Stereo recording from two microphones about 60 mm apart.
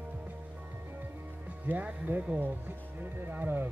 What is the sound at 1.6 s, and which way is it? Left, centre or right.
Music, right.